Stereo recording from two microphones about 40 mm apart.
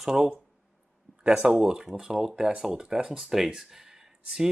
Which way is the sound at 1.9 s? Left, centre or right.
Centre.